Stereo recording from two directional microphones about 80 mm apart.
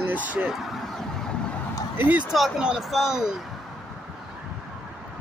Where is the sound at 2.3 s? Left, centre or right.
Centre.